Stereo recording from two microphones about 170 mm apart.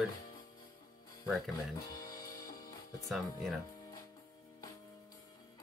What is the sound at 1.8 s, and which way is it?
Speech, 20° left (ahead or behind).